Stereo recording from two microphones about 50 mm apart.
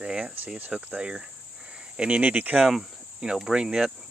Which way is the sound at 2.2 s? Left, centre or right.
Right.